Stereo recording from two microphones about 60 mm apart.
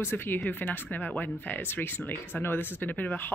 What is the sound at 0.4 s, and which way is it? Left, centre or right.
Speech, left.